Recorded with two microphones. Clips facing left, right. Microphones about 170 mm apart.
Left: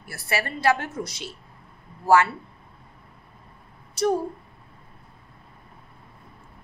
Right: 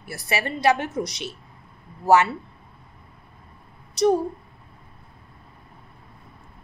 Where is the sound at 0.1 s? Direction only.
20° right (ahead or behind).